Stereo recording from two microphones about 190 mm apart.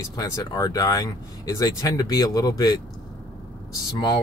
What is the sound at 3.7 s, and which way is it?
Speech, 20° left (ahead or behind).